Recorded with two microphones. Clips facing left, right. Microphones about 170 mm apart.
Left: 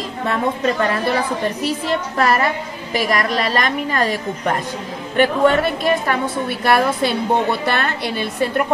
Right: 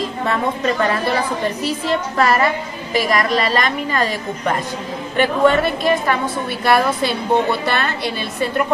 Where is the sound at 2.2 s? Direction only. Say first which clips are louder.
Right 1 dB; 50° left (ahead or behind).